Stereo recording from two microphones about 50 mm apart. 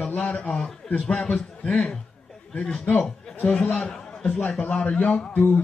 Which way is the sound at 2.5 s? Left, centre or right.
Centre.